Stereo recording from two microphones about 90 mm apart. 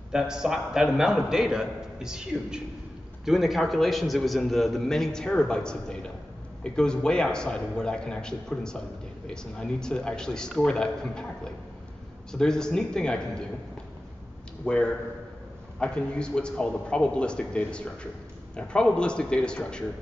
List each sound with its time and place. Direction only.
0.1 s a man's voice: 5° right (ahead or behind); by 13.4 s 10° left (ahead or behind)
14.6 s a man's voice: 10° left (ahead or behind)